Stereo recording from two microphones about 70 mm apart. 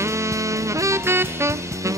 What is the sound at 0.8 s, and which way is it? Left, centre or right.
Saxophone, right.